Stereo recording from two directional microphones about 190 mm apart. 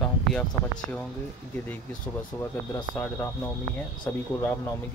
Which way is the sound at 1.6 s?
10° left (ahead or behind).